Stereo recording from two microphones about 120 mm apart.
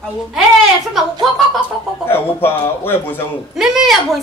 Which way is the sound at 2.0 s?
20° left (ahead or behind).